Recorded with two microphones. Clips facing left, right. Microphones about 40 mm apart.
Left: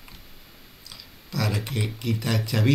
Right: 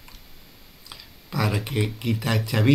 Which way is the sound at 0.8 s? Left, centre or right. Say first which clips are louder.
Right 3 dB; centre.